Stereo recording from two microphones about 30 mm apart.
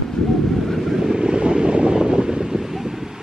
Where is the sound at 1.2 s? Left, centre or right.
Right.